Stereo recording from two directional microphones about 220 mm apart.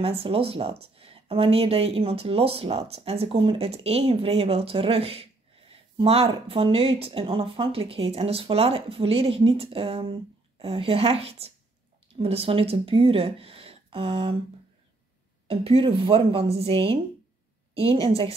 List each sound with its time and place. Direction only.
0.0 s a woman's voice: 25° right (ahead or behind)
15.4 s a woman's voice: 25° right (ahead or behind)